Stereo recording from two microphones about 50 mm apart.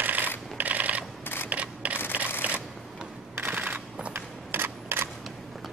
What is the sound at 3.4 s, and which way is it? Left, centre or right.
Camera, right.